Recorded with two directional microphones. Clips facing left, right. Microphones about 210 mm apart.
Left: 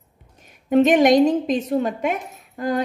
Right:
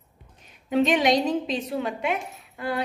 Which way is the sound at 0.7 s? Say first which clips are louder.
Left 7 dB; 50° left (ahead or behind).